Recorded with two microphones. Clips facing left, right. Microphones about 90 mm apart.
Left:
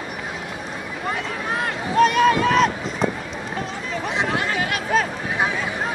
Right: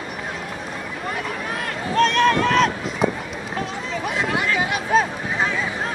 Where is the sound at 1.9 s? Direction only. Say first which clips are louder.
Left 1 dB; 5° left (ahead or behind).